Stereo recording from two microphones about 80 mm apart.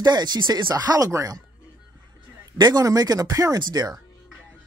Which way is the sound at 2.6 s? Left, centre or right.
Right.